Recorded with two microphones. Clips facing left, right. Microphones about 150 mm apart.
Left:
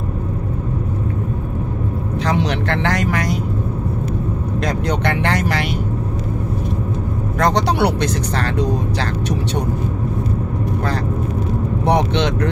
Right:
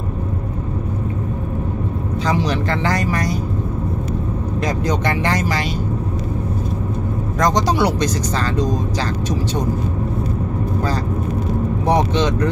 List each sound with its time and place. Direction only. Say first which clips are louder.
2.2 s speech: even; 65° left (ahead or behind)
4.6 s speech: even; 65° left (ahead or behind)
7.3 s speech: even; 65° left (ahead or behind)
11.8 s speech: even; 70° left (ahead or behind)